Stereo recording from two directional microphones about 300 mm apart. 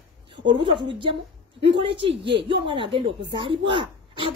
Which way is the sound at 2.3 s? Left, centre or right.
Centre.